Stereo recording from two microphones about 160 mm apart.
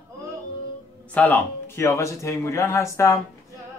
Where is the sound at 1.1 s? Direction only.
10° left (ahead or behind).